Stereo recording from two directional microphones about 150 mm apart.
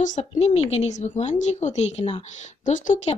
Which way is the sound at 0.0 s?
50° left (ahead or behind).